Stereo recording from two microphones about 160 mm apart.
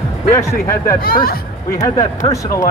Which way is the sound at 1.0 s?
70° left (ahead or behind).